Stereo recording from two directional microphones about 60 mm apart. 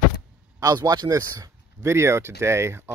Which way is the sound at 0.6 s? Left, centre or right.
Right.